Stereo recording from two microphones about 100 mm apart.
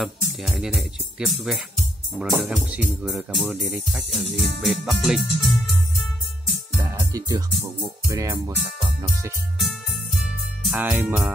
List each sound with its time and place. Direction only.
0.0 s speech: centre (ahead or behind)
6.8 s music: 25° right (ahead or behind)
10.8 s music: 20° right (ahead or behind)